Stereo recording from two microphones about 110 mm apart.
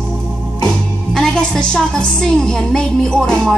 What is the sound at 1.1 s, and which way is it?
A woman's voice, 5° left (ahead or behind).